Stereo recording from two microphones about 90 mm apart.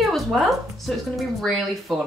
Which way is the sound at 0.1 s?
Centre (ahead or behind).